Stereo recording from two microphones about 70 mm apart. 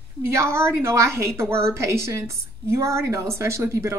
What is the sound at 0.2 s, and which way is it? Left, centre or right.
A woman's voice, right.